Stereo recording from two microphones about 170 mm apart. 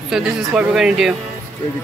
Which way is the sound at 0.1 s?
5° right (ahead or behind).